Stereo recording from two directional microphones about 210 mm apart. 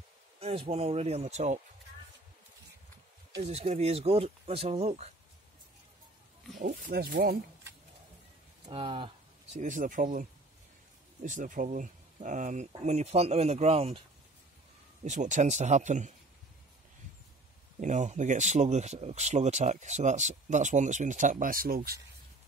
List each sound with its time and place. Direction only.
0.7 s speech: 30° right (ahead or behind)
3.4 s speech: 30° right (ahead or behind)
6.6 s speech: 40° right (ahead or behind)
8.6 s speech: 25° right (ahead or behind)
11.2 s speech: 40° right (ahead or behind)
15.0 s speech: 35° right (ahead or behind)
17.7 s speech: 35° right (ahead or behind)